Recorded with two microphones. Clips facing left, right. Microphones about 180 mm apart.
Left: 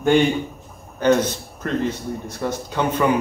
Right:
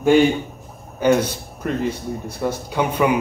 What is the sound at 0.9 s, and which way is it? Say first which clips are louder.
A man's voice: even; 10° right (ahead or behind).